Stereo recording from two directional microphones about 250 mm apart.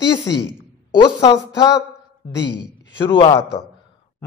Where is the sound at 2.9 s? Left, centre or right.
Centre.